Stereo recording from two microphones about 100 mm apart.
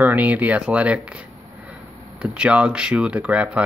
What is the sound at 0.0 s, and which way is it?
Speech, 15° right (ahead or behind).